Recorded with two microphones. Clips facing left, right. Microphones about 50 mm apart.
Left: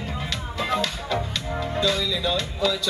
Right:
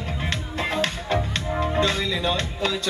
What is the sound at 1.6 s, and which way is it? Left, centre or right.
Speech, right.